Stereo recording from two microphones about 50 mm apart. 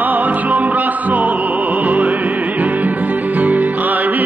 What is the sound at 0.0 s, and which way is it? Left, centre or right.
Music, right.